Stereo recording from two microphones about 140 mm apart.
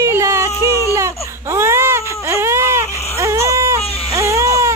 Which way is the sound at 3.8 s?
45° left (ahead or behind).